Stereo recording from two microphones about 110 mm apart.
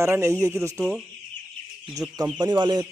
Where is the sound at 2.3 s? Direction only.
45° right (ahead or behind).